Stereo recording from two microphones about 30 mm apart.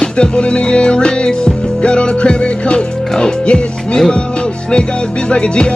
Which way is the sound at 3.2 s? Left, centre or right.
Left.